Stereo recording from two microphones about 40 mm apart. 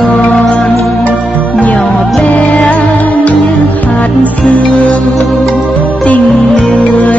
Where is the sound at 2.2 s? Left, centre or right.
Left.